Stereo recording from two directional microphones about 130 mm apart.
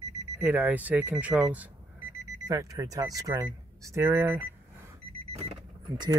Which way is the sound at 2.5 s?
25° right (ahead or behind).